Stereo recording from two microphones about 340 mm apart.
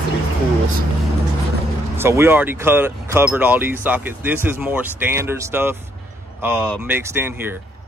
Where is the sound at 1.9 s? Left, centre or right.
Centre.